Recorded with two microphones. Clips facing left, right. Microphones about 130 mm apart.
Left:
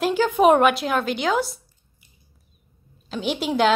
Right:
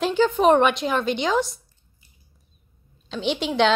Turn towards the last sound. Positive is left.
turn(degrees=5)  # may be behind; listen again after turning